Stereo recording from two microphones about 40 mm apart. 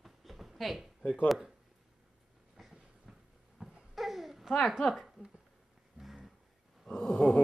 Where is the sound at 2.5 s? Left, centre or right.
Centre.